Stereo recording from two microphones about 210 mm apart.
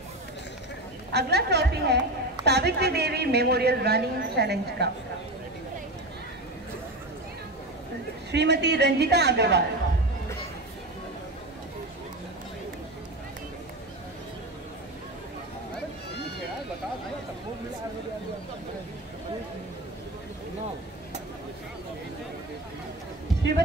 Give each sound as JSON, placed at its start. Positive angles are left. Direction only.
{"t": 1.1, "sound": "a woman's voice", "side_deg": -50}
{"t": 8.3, "sound": "a woman's voice", "side_deg": -55}